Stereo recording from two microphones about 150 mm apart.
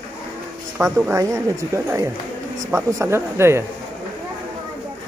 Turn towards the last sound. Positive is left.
turn(degrees=-15)  # may be behind; listen again after turning